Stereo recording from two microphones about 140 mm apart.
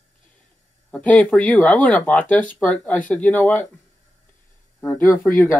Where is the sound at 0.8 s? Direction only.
10° left (ahead or behind).